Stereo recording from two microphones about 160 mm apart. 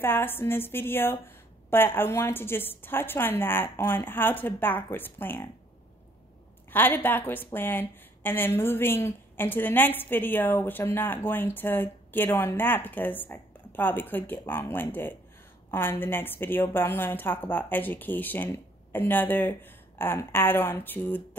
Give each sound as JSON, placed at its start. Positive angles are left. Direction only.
{"t": 0.0, "sound": "a woman's voice", "side_deg": 15}
{"t": 6.7, "sound": "a woman's voice", "side_deg": 10}